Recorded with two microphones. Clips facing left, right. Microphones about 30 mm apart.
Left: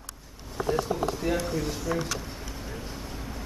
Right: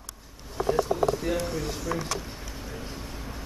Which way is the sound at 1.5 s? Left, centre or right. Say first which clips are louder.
Left 1 dB; centre.